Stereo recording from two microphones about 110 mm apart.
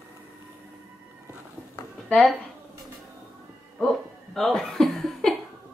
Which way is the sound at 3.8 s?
Centre (ahead or behind).